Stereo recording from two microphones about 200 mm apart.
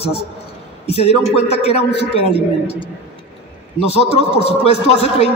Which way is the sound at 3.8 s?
30° left (ahead or behind).